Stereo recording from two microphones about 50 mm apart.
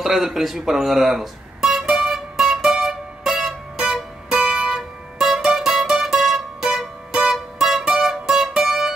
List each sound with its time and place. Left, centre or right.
0.0 s music: centre
4.6 s music: centre